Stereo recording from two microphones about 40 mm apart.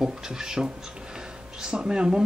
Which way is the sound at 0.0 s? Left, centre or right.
Centre.